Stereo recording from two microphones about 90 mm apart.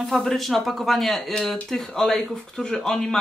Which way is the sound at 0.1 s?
5° left (ahead or behind).